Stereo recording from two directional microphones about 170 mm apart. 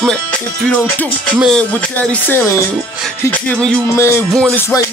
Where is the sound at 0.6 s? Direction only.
10° left (ahead or behind).